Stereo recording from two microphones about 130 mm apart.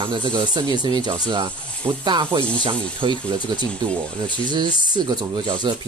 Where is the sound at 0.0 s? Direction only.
40° right (ahead or behind).